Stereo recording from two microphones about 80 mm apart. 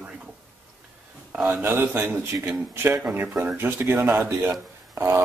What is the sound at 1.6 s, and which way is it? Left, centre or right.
A man's voice, right.